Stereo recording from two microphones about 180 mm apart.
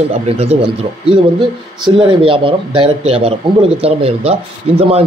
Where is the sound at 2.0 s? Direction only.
30° right (ahead or behind).